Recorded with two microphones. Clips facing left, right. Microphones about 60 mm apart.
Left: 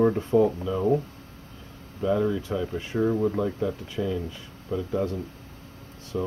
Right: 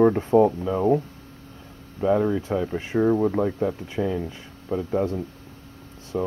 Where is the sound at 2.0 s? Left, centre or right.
Right.